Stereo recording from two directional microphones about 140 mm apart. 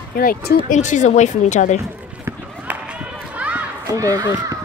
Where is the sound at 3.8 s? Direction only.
25° right (ahead or behind).